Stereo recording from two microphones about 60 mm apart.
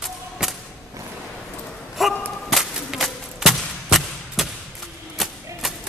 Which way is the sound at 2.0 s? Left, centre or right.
Centre.